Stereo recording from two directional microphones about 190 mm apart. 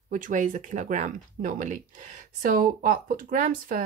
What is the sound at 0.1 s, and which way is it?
Speech, 45° right (ahead or behind).